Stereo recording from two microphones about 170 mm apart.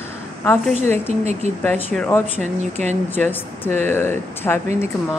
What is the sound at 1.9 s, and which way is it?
Speech, 10° left (ahead or behind).